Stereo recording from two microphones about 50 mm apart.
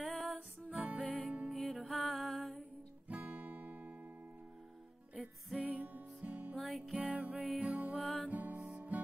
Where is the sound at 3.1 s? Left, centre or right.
Right.